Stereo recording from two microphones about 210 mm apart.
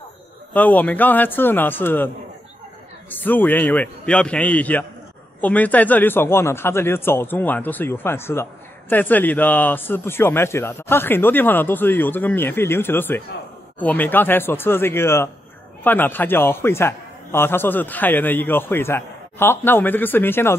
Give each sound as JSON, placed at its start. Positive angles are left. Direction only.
{"t": 0.5, "sound": "speech", "side_deg": 10}
{"t": 3.1, "sound": "speech", "side_deg": 10}